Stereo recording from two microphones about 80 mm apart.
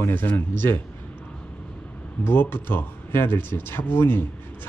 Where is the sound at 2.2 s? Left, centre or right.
Left.